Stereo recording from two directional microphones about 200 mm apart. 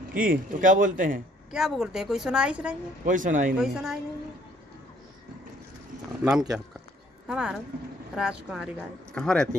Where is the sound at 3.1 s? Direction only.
40° right (ahead or behind).